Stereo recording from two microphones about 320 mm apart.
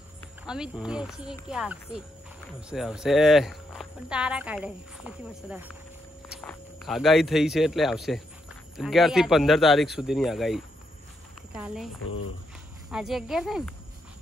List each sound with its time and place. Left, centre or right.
0.5 s speech: centre
12.0 s speech: left
12.9 s speech: centre